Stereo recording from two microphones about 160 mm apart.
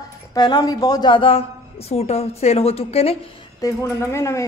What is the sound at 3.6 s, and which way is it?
Speech, 15° left (ahead or behind).